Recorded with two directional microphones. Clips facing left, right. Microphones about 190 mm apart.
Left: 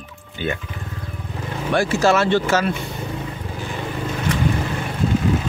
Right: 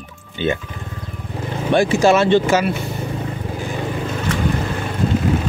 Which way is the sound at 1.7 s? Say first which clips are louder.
Right 3 dB; 20° right (ahead or behind).